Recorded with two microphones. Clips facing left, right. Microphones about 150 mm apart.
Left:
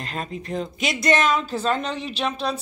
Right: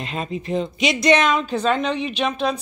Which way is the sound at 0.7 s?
20° right (ahead or behind).